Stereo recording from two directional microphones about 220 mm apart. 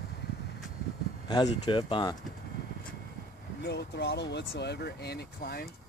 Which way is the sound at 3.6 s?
50° left (ahead or behind).